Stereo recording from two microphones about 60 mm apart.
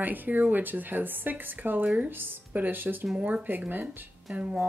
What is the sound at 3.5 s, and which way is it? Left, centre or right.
Speech, right.